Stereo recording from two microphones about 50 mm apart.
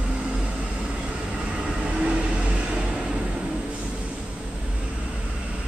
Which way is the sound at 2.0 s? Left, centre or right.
Right.